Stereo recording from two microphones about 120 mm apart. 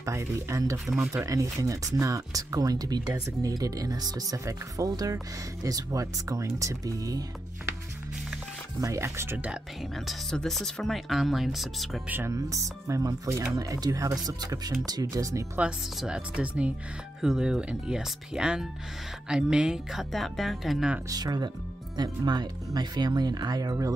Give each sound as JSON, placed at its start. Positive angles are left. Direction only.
{"t": 0.0, "sound": "speech", "side_deg": -25}
{"t": 8.8, "sound": "speech", "side_deg": -25}
{"t": 9.5, "sound": "a woman's voice", "side_deg": 0}
{"t": 12.1, "sound": "speech", "side_deg": -20}
{"t": 16.0, "sound": "a woman's voice", "side_deg": -10}
{"t": 21.1, "sound": "speech", "side_deg": -35}